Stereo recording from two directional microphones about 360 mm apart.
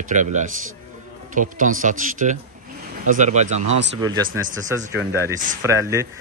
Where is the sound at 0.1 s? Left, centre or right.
Centre.